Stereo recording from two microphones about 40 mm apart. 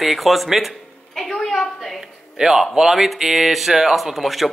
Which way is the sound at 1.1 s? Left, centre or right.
Centre.